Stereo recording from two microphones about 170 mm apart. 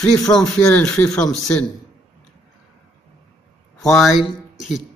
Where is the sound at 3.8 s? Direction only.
Centre (ahead or behind).